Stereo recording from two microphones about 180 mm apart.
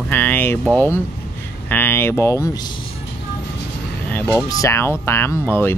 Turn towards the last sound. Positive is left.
turn(degrees=10)  # may be behind; listen again after turning